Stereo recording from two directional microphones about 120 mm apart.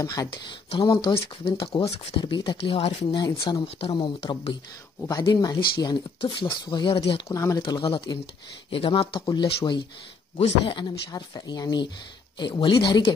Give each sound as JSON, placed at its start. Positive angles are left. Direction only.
{"t": 0.0, "sound": "speech", "side_deg": 30}
{"t": 1.1, "sound": "speech", "side_deg": 50}
{"t": 3.2, "sound": "speech", "side_deg": 35}
{"t": 7.0, "sound": "speech", "side_deg": 50}
{"t": 7.2, "sound": "speech", "side_deg": 25}
{"t": 7.6, "sound": "speech", "side_deg": 45}
{"t": 10.3, "sound": "speech", "side_deg": 55}
{"t": 10.8, "sound": "speech", "side_deg": 35}